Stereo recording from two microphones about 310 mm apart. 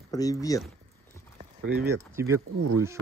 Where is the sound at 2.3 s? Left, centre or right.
Right.